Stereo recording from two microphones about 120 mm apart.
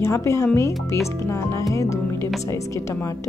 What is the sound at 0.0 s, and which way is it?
Speech, 25° left (ahead or behind).